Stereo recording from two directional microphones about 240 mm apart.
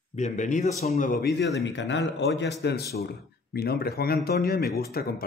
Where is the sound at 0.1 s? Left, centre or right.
Left.